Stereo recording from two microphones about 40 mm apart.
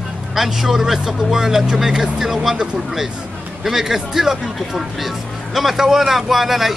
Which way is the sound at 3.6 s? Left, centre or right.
Centre.